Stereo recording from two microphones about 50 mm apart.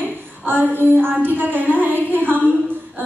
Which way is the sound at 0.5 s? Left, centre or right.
Right.